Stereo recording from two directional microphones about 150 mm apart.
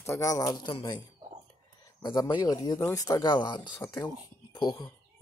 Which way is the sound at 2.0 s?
30° left (ahead or behind).